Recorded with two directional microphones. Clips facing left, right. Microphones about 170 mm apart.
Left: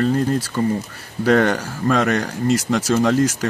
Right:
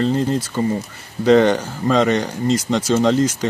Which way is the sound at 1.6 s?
25° right (ahead or behind).